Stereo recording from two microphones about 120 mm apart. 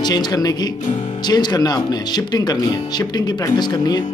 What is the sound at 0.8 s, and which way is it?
Speech, 90° left.